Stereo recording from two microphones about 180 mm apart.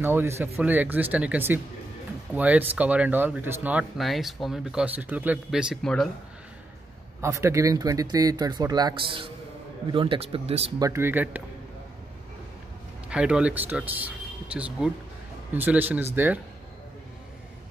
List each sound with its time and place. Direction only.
0.0 s speech: 15° right (ahead or behind)
7.2 s speech: 15° right (ahead or behind); by 10.7 s 35° right (ahead or behind)
10.8 s speech: 15° right (ahead or behind)
13.1 s speech: 5° right (ahead or behind)